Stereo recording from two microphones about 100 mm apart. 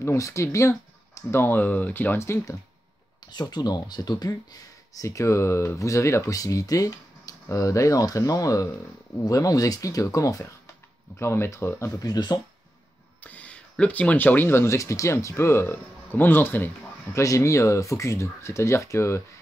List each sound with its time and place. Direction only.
0.0 s speech: 30° left (ahead or behind)
3.2 s speech: 45° left (ahead or behind)
13.2 s speech: 15° left (ahead or behind)
17.2 s speech: 30° left (ahead or behind)